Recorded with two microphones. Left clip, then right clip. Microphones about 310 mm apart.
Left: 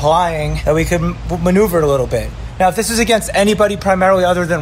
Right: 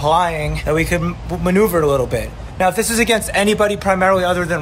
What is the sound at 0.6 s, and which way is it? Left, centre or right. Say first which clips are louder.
A man's voice: left 3 dB; centre.